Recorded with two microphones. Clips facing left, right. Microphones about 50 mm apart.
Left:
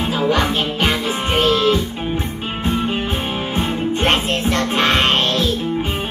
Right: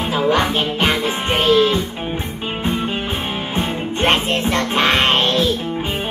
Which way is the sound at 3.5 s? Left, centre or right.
Centre.